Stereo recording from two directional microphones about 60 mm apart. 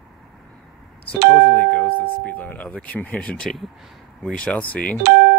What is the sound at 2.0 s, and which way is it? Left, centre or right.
Speech, left.